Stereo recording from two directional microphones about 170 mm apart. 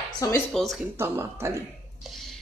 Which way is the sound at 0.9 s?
15° right (ahead or behind).